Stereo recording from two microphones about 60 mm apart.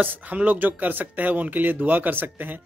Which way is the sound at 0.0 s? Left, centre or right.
Right.